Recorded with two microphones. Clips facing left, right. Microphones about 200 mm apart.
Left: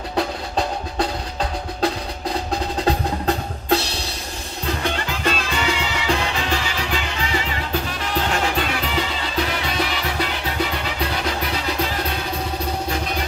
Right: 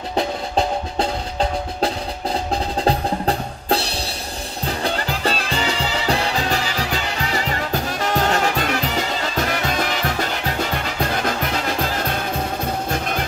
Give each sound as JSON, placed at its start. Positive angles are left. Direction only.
{"t": 0.6, "sound": "music", "side_deg": -25}